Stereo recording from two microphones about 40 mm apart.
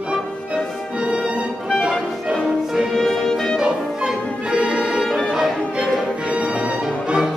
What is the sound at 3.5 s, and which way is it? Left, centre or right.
Music, centre.